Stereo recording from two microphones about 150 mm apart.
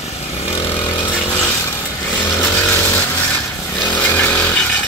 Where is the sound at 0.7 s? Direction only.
15° left (ahead or behind).